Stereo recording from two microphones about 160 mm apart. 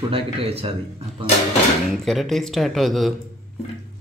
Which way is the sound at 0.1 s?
35° right (ahead or behind).